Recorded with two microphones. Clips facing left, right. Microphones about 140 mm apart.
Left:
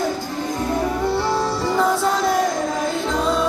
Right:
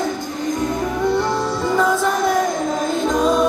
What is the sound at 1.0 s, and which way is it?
Music, 5° left (ahead or behind).